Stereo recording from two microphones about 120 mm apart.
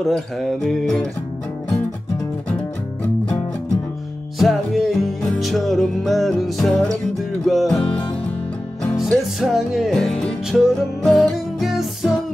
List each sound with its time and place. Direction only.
0.0 s music: centre (ahead or behind)
4.4 s music: centre (ahead or behind)
9.0 s music: centre (ahead or behind)